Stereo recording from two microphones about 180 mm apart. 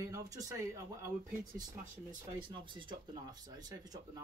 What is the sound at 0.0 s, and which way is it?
Speech, 20° right (ahead or behind).